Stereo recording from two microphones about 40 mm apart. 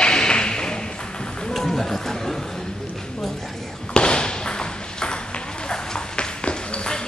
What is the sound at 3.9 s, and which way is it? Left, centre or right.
Ping, left.